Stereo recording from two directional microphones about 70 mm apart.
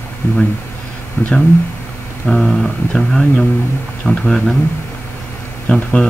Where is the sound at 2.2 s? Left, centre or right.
Centre.